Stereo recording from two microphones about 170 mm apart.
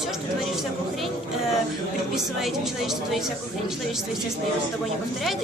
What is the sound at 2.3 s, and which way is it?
Speech, centre (ahead or behind).